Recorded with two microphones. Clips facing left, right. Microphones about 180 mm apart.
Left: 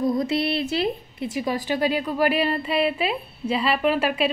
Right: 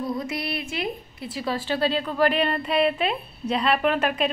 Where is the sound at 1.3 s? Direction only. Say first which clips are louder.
Left 1 dB; 15° left (ahead or behind).